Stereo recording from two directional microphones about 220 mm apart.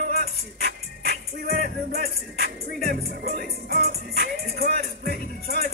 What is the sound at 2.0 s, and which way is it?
Music, 45° left (ahead or behind).